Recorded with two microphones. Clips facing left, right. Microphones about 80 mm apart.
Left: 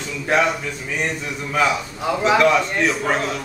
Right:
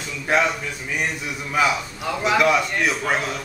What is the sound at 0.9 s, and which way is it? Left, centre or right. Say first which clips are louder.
A man's voice: left 1 dB; centre.